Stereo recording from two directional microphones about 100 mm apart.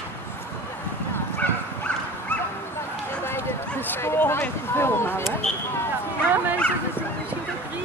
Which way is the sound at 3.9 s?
20° left (ahead or behind).